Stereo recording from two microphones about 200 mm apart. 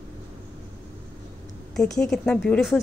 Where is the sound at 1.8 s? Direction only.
5° left (ahead or behind).